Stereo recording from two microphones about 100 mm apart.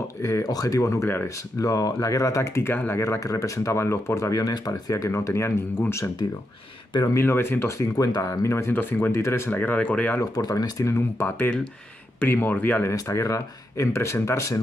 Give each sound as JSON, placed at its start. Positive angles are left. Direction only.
{"t": 0.2, "sound": "speech", "side_deg": 35}
{"t": 1.6, "sound": "speech", "side_deg": 35}
{"t": 7.2, "sound": "speech", "side_deg": 25}
{"t": 8.0, "sound": "speech", "side_deg": 35}
{"t": 10.3, "sound": "speech", "side_deg": 40}
{"t": 12.9, "sound": "speech", "side_deg": 30}